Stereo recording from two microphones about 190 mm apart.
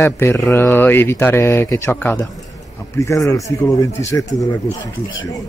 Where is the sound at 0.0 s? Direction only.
15° left (ahead or behind).